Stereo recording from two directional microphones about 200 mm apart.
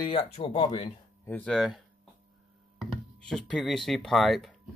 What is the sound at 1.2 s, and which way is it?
Speech, 5° left (ahead or behind).